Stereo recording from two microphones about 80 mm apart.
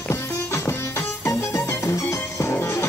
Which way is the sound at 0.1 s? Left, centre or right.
Left.